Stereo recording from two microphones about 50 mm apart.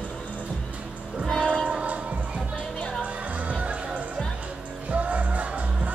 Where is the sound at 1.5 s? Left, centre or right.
Centre.